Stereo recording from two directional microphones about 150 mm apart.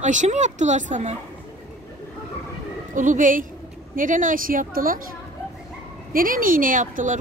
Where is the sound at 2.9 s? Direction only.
60° right (ahead or behind).